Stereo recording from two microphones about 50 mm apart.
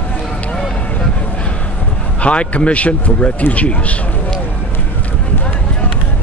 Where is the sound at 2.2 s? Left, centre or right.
Left.